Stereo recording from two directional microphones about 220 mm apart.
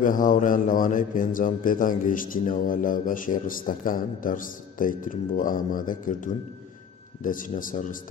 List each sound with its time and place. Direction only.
0.0 s a man's voice: 35° left (ahead or behind)